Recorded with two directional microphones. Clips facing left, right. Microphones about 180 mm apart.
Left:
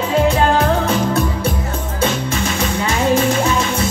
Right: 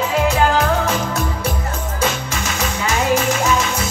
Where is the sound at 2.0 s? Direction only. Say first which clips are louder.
Left 4 dB; 30° left (ahead or behind).